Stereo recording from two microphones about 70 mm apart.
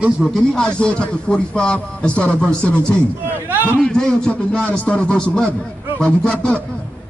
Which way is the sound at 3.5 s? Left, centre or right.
Right.